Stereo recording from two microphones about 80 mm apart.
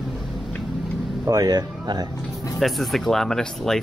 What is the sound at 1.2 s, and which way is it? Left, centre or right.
Speech, right.